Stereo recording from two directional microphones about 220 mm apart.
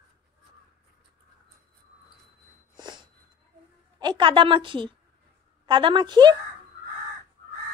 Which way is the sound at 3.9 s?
20° right (ahead or behind).